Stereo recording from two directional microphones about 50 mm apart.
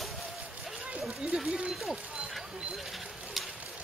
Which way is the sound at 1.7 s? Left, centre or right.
Centre.